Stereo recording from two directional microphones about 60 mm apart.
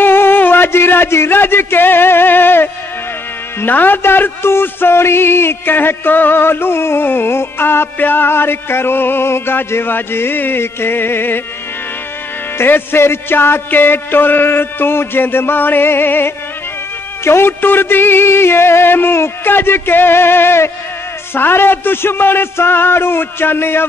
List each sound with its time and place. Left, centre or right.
0.0 s a sound: left
3.6 s a man's voice: left
12.5 s a man's voice: left